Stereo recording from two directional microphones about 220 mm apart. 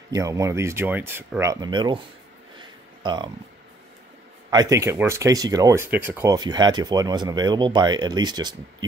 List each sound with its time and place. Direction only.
0.1 s speech: 15° right (ahead or behind)
2.5 s a sound: 20° right (ahead or behind)
4.5 s speech: 15° right (ahead or behind)